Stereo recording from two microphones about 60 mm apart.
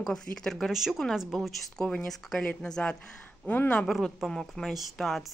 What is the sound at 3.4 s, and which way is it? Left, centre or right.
Speech, left.